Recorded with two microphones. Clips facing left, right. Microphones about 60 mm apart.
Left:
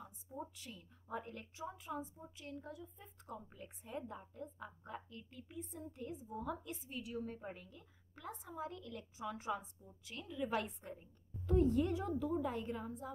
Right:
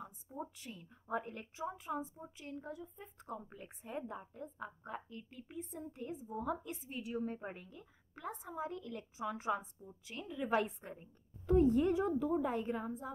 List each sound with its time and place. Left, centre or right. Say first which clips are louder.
0.0 s a woman's voice: right 3 dB; right